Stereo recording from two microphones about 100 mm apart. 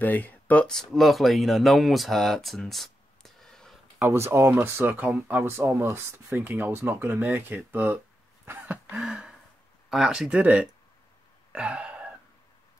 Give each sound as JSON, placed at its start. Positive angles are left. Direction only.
{"t": 0.0, "sound": "speech", "side_deg": 20}
{"t": 4.0, "sound": "speech", "side_deg": -25}
{"t": 8.9, "sound": "a sound", "side_deg": -10}
{"t": 9.8, "sound": "speech", "side_deg": -5}
{"t": 11.5, "sound": "throat clearing", "side_deg": -10}